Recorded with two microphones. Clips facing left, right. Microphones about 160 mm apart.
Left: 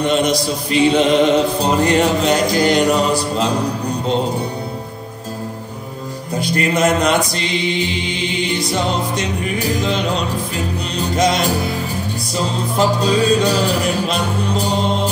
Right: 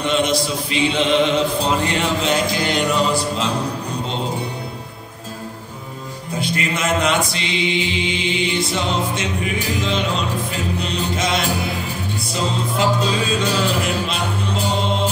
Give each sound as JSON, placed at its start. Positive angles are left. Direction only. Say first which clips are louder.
{"t": 0.0, "sound": "mantra", "louder": "left 3 dB", "side_deg": 40}
{"t": 6.4, "sound": "mantra", "louder": "left 7 dB", "side_deg": 40}
{"t": 11.0, "sound": "music", "louder": "left 7 dB", "side_deg": 40}
{"t": 12.4, "sound": "mantra", "louder": "left 3 dB", "side_deg": 40}